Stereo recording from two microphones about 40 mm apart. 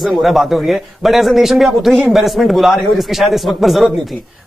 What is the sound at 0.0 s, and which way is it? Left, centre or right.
Speech, centre.